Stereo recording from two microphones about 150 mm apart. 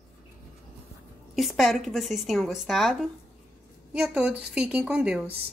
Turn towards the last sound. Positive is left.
turn(degrees=-10)  # may be behind; listen again after turning